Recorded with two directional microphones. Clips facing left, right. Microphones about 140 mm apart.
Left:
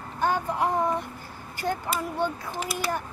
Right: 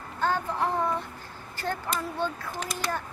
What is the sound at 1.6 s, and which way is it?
Speech, 10° left (ahead or behind).